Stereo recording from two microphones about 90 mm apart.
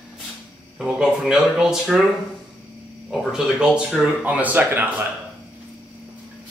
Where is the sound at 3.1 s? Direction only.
5° right (ahead or behind).